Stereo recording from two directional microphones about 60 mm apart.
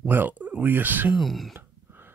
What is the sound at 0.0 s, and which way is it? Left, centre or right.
Speech, right.